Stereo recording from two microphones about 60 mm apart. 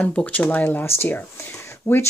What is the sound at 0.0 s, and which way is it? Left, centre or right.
Speech, left.